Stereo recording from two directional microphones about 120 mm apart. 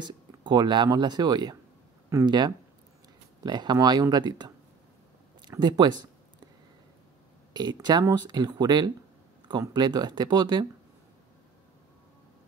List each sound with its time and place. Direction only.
0.0 s speech: 40° right (ahead or behind)
5.6 s speech: 35° right (ahead or behind)
7.5 s speech: 35° right (ahead or behind)